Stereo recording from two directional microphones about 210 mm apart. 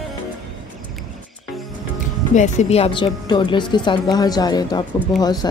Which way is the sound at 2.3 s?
35° left (ahead or behind).